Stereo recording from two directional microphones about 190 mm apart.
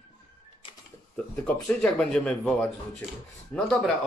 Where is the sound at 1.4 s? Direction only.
5° left (ahead or behind).